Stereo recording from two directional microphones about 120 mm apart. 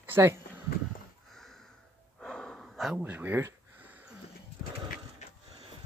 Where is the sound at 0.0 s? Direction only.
20° right (ahead or behind).